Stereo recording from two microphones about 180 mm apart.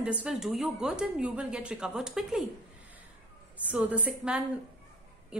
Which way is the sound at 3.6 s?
10° right (ahead or behind).